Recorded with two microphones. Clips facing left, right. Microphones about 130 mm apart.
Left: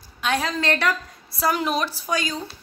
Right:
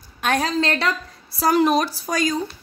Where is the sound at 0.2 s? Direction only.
50° right (ahead or behind).